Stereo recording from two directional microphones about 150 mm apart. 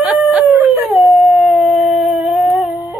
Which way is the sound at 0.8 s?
Centre (ahead or behind).